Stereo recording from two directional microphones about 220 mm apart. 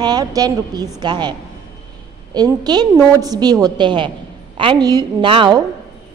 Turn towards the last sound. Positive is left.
turn(degrees=-20)  # may be behind; listen again after turning